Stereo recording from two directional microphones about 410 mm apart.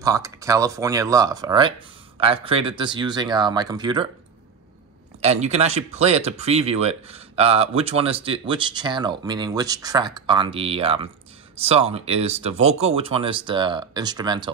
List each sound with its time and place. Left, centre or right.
0.0 s speech: centre
5.2 s speech: centre